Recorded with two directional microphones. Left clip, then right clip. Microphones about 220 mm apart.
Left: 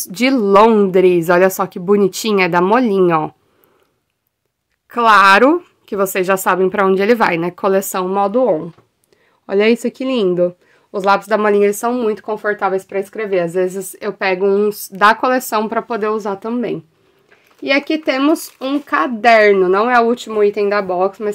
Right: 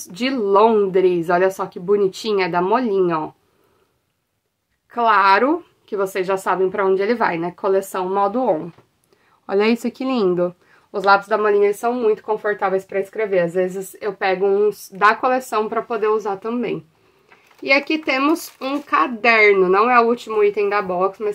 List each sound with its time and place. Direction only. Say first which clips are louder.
0.0 s speech: left 6 dB; 50° left (ahead or behind)
4.8 s speech: left 5 dB; 55° left (ahead or behind); by 8.6 s 30° left (ahead or behind)
9.5 s speech: left 4 dB; 20° left (ahead or behind)
11.2 s speech: left 3 dB; 50° left (ahead or behind)